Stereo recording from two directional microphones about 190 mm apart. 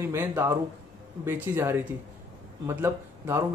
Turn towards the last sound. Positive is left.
turn(degrees=-15)  # may be behind; listen again after turning